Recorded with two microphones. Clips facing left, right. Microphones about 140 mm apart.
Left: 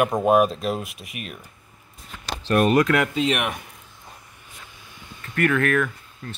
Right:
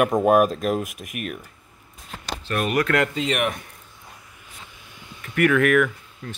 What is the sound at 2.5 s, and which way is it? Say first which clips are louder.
Speech: left 7 dB; 40° left (ahead or behind).